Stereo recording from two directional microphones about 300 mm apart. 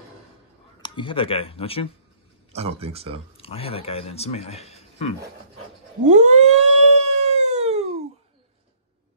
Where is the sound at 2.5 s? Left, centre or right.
Centre.